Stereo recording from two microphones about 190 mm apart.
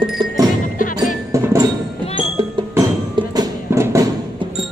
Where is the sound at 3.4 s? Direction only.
15° right (ahead or behind).